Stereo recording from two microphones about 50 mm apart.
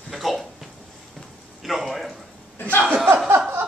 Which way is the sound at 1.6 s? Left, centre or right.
Centre.